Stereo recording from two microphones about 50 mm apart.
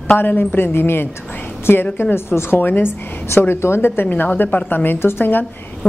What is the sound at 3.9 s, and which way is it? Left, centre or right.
A woman's voice, left.